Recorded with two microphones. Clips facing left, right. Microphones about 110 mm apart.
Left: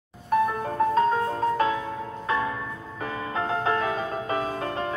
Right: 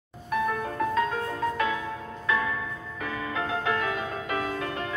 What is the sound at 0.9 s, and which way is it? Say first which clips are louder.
Music: left 5 dB; 35° left (ahead or behind).